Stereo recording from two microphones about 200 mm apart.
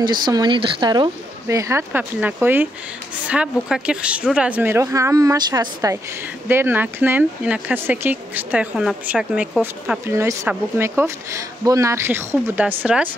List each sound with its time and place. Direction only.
0.0 s speech: 20° right (ahead or behind)